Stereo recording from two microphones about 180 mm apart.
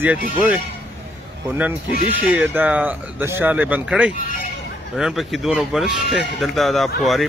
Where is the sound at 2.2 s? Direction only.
10° right (ahead or behind).